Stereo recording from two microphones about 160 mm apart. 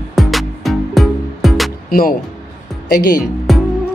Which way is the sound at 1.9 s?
65° left (ahead or behind).